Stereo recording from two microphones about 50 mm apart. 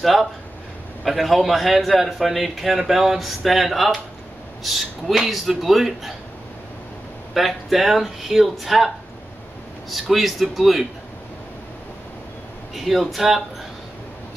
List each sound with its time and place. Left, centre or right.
0.0 s a man's voice: centre
7.3 s a man's voice: centre
12.7 s a man's voice: centre